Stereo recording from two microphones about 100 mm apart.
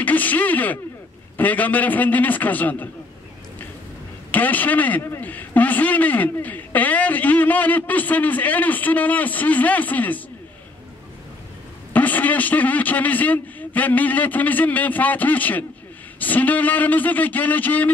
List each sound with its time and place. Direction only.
0.0 s a man's voice: 15° left (ahead or behind)
4.3 s a man's voice: 15° left (ahead or behind)
11.9 s a man's voice: 15° left (ahead or behind)